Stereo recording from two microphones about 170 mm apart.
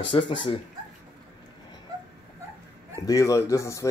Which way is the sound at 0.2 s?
90° left.